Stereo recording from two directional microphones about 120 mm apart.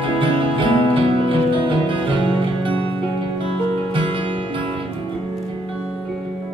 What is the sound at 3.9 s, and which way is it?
Music, 45° right (ahead or behind).